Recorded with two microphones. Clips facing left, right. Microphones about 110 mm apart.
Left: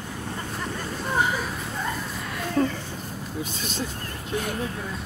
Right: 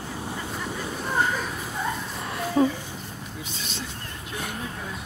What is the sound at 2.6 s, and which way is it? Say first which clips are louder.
Speech: right 2 dB; 10° right (ahead or behind).